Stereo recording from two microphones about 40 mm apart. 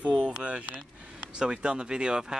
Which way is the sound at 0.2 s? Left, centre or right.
Right.